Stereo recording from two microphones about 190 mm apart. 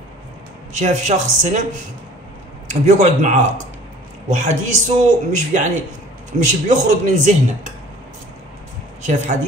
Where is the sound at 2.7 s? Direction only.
40° right (ahead or behind).